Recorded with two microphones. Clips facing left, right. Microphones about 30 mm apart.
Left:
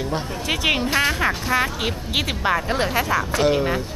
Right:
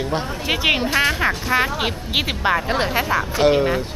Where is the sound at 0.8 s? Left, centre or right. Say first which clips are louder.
Right 2 dB; centre.